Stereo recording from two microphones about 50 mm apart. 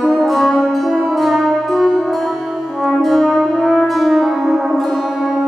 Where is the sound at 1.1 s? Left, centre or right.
Centre.